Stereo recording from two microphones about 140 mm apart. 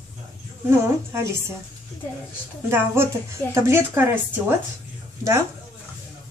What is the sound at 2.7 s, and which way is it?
Speech, 15° right (ahead or behind).